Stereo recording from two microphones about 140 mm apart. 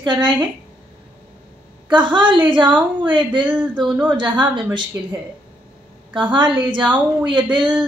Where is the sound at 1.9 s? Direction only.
35° right (ahead or behind).